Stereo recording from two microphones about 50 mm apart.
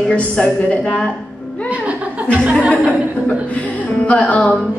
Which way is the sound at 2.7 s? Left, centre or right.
Left.